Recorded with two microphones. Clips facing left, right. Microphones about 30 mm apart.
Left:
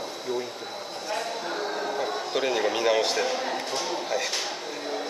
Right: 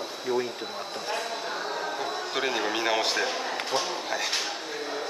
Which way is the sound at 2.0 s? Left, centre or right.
Centre.